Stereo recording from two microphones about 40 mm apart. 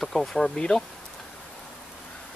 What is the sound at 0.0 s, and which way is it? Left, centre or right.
Speech, centre.